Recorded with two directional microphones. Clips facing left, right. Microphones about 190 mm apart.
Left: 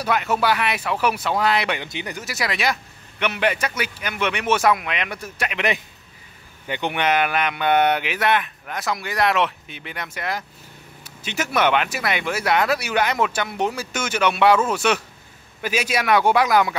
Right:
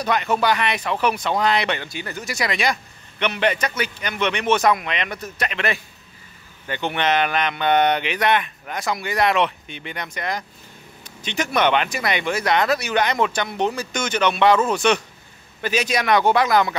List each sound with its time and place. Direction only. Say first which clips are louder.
0.0 s speech: right 1 dB; 5° left (ahead or behind)
1.9 s speech: even; 20° left (ahead or behind)
2.2 s speech: right 2 dB; 5° left (ahead or behind)